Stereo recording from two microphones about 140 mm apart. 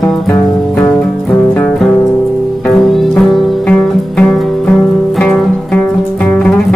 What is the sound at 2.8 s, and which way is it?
Music, centre (ahead or behind).